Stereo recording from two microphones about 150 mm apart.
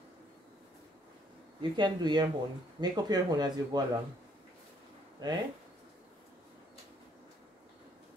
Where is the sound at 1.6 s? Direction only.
30° right (ahead or behind).